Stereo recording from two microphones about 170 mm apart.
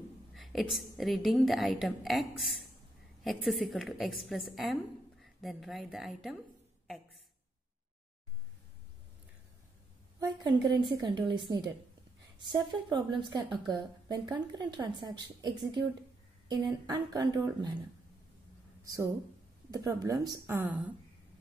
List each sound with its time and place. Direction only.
0.3 s a woman's voice: centre (ahead or behind)
10.1 s a woman's voice: 25° right (ahead or behind)
19.7 s speech: 20° right (ahead or behind)